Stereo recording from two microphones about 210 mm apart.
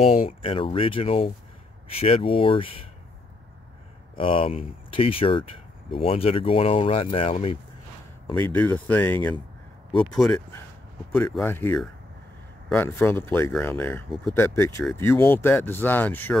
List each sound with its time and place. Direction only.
0.3 s speech: 25° left (ahead or behind)
4.2 s speech: 25° left (ahead or behind)
8.5 s speech: 10° left (ahead or behind)